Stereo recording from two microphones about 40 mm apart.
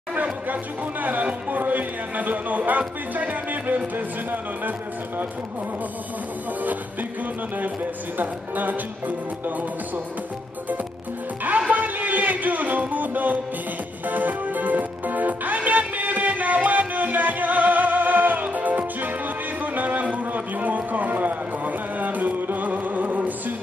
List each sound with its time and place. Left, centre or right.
0.1 s chatter: right
1.0 s speech: right
6.6 s speech: right
8.2 s speech: right
11.4 s music: right